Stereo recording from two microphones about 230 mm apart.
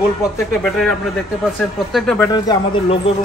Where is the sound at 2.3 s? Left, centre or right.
Left.